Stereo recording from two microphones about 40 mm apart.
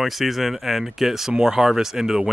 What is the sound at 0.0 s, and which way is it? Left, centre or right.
Speech, centre.